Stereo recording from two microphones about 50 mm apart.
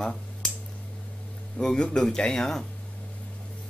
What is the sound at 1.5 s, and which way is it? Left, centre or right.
Speech, centre.